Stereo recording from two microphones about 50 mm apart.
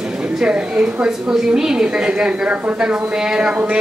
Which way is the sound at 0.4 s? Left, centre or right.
Centre.